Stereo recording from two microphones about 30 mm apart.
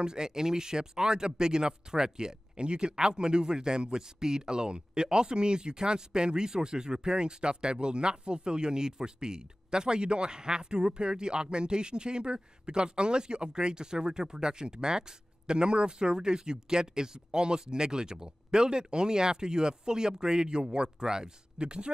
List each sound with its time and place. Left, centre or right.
0.0 s a man's voice: right